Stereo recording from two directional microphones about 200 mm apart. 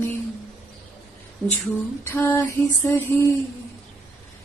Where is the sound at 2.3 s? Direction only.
15° left (ahead or behind).